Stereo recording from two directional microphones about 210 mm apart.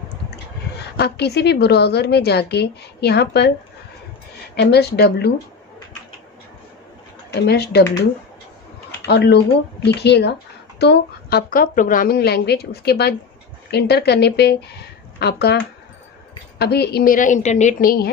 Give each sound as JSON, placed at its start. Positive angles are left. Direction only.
{"t": 0.9, "sound": "a woman's voice", "side_deg": 50}
{"t": 4.6, "sound": "a woman's voice", "side_deg": 50}
{"t": 7.4, "sound": "a woman's voice", "side_deg": 50}
{"t": 9.0, "sound": "a woman's voice", "side_deg": 50}
{"t": 16.5, "sound": "a woman's voice", "side_deg": 50}